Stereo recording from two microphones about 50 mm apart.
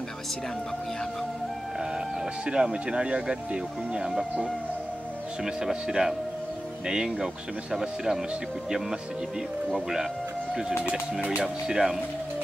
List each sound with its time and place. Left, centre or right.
2.4 s speech: centre
5.4 s speech: centre
11.4 s speech: centre